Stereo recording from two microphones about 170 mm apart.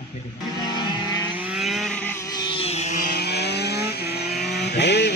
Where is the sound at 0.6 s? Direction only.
25° left (ahead or behind).